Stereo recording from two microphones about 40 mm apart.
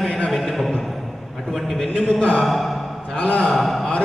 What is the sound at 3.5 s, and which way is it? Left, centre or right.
Speech, centre.